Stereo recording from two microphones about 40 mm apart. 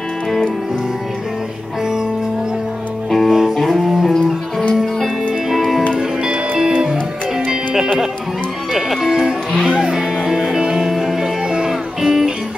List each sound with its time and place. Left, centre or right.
3.1 s music: centre
5.6 s music: centre
6.8 s music: centre
8.7 s music: centre
10.8 s music: centre